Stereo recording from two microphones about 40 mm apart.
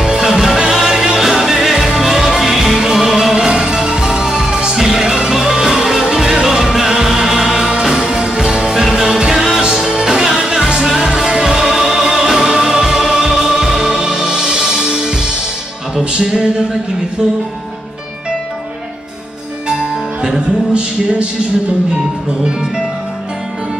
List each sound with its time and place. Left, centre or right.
0.0 s music: centre
11.1 s music: centre
19.7 s music: centre